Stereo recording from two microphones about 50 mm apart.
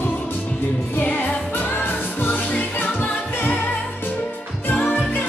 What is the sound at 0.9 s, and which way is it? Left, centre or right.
Music, left.